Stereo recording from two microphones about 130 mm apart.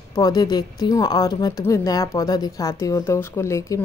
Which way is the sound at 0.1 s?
30° left (ahead or behind).